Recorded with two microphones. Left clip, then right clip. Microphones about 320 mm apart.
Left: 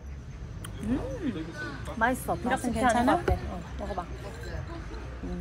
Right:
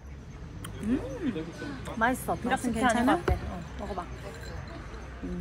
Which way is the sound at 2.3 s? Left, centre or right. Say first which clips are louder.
Even; centre.